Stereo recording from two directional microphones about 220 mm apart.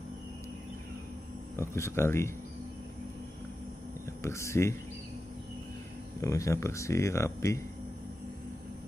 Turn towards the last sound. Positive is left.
turn(degrees=15)  # may be behind; listen again after turning